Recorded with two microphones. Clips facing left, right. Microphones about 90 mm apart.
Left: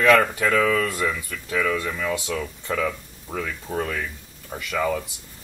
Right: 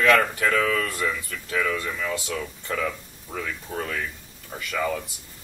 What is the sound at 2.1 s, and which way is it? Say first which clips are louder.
Speech: left 3 dB; 20° left (ahead or behind).